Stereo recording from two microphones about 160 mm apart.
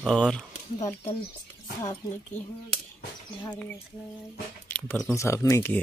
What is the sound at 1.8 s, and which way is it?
Speech, 20° left (ahead or behind).